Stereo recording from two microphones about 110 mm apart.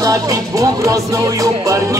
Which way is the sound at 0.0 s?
30° right (ahead or behind).